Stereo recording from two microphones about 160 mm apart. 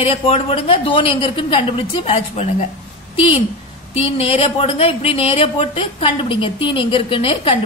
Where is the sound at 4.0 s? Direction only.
35° left (ahead or behind).